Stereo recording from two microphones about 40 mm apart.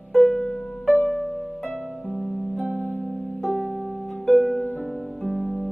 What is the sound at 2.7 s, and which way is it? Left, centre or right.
Music, left.